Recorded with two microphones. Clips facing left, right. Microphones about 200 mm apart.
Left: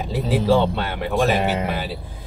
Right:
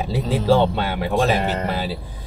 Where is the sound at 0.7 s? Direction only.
10° right (ahead or behind).